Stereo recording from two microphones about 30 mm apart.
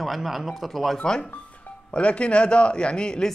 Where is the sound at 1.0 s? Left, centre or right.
Left.